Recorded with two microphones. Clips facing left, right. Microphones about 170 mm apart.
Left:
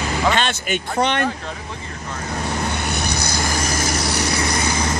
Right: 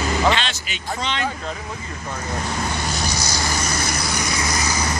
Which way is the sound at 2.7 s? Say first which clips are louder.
Left 1 dB; 60° left (ahead or behind).